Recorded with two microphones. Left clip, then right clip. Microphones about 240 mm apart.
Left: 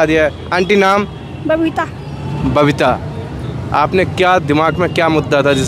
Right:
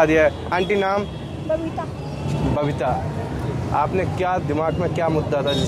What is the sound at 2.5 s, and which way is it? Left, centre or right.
A man's voice, left.